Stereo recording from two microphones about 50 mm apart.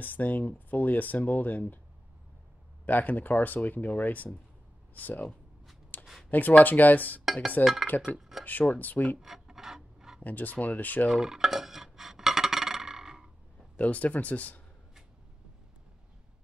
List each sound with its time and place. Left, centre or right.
0.0 s speech: left
2.8 s speech: left
5.9 s a sound: left
6.3 s speech: left
8.2 s a sound: centre
8.5 s speech: left
9.2 s filing: centre
10.2 s speech: left
11.1 s dishes: centre
13.7 s speech: left